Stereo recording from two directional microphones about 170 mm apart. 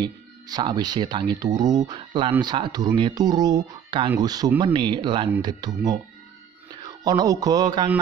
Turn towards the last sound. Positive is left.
turn(degrees=-25)  # may be behind; listen again after turning